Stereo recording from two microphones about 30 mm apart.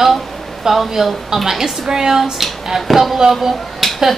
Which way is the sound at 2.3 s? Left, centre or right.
Centre.